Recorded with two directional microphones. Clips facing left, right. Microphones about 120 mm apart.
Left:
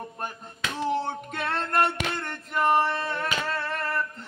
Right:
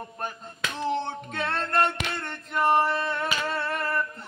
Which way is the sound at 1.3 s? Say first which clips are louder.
Right 1 dB; 10° left (ahead or behind).